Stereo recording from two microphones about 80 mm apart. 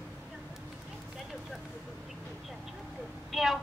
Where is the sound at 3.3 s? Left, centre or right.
Centre.